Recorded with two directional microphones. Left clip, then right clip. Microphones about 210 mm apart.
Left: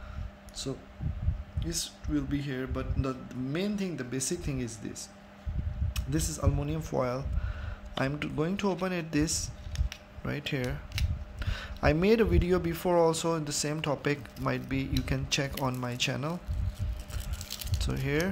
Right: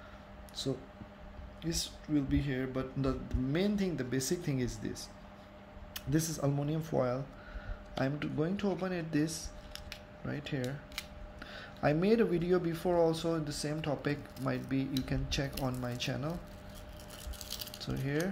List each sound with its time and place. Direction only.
0.6 s a man's voice: centre (ahead or behind)
5.9 s a sound: 5° left (ahead or behind)
6.4 s speech: 10° left (ahead or behind)
17.7 s speech: 20° left (ahead or behind)